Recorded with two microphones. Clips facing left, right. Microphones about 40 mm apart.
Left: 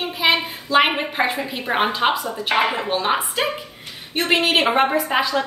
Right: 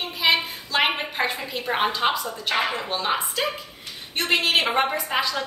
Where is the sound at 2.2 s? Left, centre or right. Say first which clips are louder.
Left 5 dB; left.